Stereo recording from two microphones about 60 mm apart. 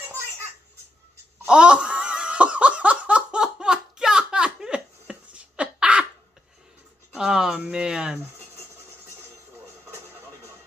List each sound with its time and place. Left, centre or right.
1.5 s laughter: centre
7.2 s music: centre
7.7 s a sound: centre